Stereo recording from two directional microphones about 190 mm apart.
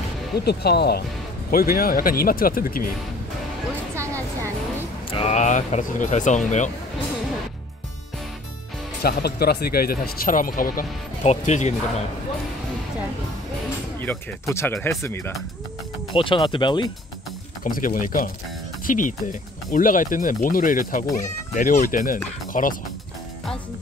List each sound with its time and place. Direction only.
0.4 s speech: 60° left (ahead or behind)
3.9 s music: 15° right (ahead or behind)
5.1 s speech: 35° left (ahead or behind)
9.0 s speech: 55° left (ahead or behind); by 11.7 s 40° left (ahead or behind)
14.0 s speech: 15° left (ahead or behind)
16.1 s speech: 25° left (ahead or behind)
17.6 s speech: 45° left (ahead or behind)